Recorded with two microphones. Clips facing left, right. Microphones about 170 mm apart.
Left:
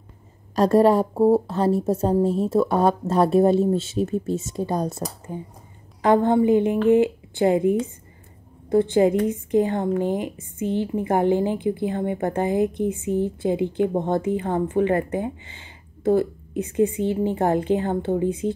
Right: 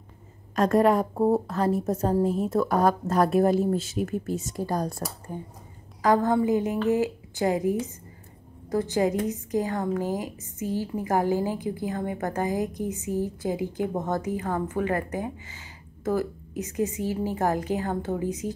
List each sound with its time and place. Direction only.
0.6 s a woman's voice: 30° left (ahead or behind)